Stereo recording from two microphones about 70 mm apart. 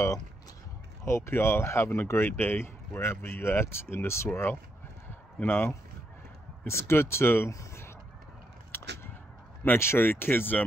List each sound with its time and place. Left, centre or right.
1.0 s speech: left
4.3 s speech: left
7.5 s a sound: left
9.8 s speech: left